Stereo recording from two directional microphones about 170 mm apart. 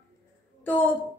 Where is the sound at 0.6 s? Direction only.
10° left (ahead or behind).